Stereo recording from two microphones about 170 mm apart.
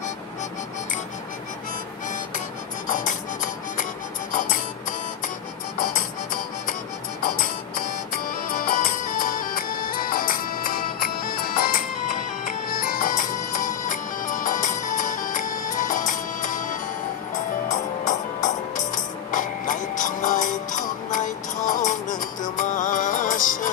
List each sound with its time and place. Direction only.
2.9 s music: 50° left (ahead or behind)
7.2 s music: 55° left (ahead or behind)